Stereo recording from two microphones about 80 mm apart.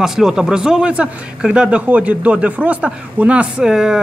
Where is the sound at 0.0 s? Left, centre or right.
Centre.